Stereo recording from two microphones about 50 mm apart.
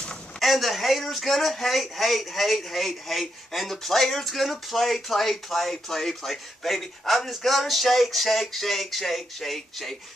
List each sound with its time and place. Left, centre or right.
0.4 s speech: centre